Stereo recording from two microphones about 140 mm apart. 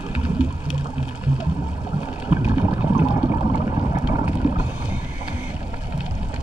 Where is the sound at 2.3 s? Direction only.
15° right (ahead or behind).